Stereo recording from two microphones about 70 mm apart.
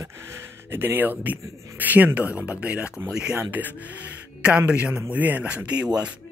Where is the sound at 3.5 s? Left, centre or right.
Right.